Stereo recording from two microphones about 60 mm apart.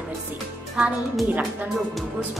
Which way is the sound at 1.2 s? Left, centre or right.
Right.